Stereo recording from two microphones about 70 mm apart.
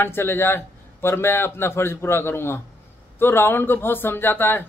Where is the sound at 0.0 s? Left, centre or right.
Left.